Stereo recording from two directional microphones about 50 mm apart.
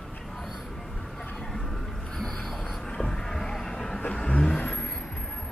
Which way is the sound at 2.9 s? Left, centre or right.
Centre.